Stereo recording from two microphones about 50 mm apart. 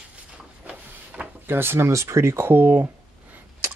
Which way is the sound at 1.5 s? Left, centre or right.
Right.